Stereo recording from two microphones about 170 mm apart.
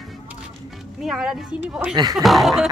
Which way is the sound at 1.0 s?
5° right (ahead or behind).